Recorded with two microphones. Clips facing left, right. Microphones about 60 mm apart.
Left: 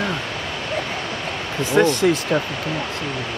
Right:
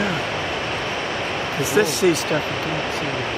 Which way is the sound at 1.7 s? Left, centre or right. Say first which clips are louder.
Left 2 dB; centre.